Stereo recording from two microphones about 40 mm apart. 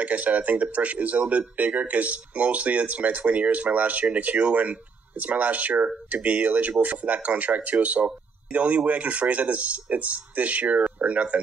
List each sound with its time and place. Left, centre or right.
0.0 s speech: right